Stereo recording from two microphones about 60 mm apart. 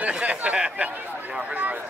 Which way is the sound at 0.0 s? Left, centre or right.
Right.